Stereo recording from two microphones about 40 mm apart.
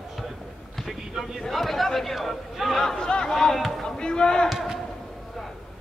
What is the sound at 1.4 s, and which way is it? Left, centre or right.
Chatter, centre.